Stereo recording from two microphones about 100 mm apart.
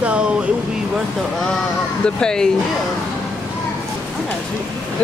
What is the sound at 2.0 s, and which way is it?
Speech, 10° left (ahead or behind).